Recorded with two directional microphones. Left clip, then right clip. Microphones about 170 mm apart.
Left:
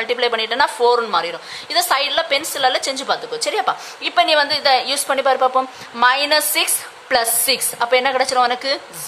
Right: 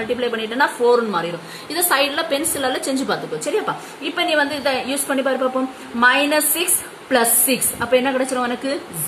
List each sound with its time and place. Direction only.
0.1 s a woman's voice: 45° left (ahead or behind)
7.8 s a woman's voice: 40° left (ahead or behind)